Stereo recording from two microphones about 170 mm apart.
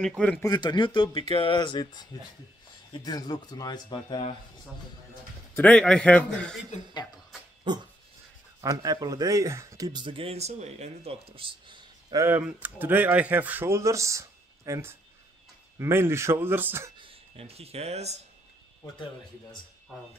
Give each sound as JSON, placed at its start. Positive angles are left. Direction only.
{"t": 0.4, "sound": "speech", "side_deg": 25}
{"t": 5.6, "sound": "a man's voice", "side_deg": 5}
{"t": 7.7, "sound": "dog", "side_deg": -25}
{"t": 8.5, "sound": "speech", "side_deg": -20}
{"t": 12.3, "sound": "speech", "side_deg": -10}
{"t": 17.0, "sound": "speech", "side_deg": -35}